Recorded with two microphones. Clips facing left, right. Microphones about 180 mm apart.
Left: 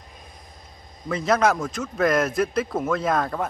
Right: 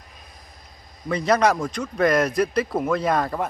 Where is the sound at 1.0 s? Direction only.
Centre (ahead or behind).